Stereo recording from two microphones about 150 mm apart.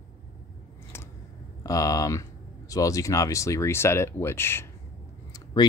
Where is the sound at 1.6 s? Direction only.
25° left (ahead or behind).